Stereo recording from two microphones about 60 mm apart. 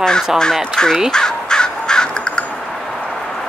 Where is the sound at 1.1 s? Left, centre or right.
Centre.